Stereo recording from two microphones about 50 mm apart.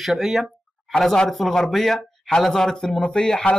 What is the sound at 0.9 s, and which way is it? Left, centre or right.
A man's voice, centre.